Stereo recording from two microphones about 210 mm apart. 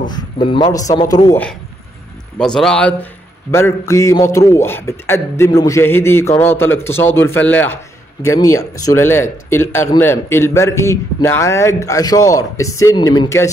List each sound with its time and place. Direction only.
0.1 s a man's voice: 20° left (ahead or behind)
2.3 s a man's voice: 5° left (ahead or behind)